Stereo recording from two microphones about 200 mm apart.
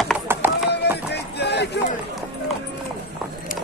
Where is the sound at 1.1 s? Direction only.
55° left (ahead or behind).